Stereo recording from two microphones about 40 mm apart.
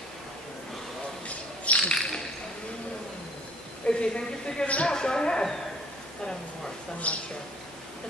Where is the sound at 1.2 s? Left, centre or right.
Left.